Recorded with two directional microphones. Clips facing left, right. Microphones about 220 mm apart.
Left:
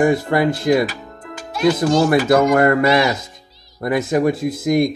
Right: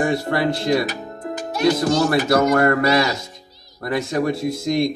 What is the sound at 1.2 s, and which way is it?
Music, 45° right (ahead or behind).